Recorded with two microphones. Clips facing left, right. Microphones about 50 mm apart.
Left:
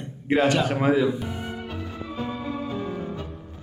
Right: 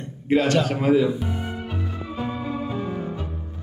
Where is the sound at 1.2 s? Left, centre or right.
Centre.